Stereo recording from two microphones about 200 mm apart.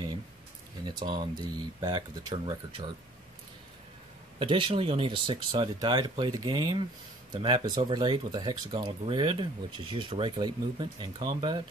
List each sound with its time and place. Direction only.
0.8 s speech: 20° right (ahead or behind)
4.4 s speech: 25° right (ahead or behind)